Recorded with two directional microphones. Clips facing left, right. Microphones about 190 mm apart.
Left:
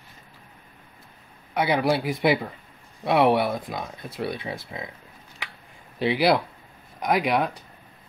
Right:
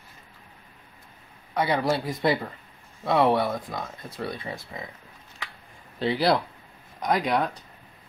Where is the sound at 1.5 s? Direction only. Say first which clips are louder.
Left 2 dB; 15° left (ahead or behind).